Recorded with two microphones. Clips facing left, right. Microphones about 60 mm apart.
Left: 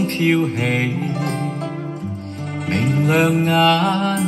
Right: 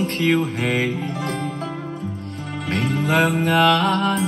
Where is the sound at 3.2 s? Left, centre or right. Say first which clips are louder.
Even; left.